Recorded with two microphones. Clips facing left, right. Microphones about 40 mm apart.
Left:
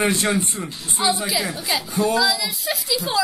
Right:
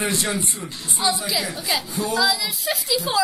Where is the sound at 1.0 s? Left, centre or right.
Centre.